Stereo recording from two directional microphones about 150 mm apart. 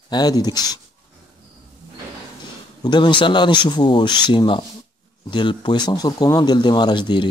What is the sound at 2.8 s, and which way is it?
Speech, 30° left (ahead or behind).